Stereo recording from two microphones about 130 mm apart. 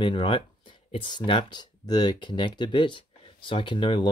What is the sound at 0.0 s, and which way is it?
Speech, 40° left (ahead or behind).